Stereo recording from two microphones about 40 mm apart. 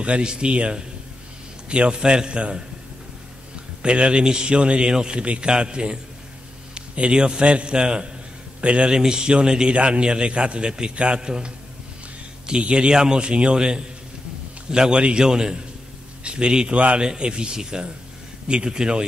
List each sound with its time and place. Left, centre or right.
0.0 s a man's voice: right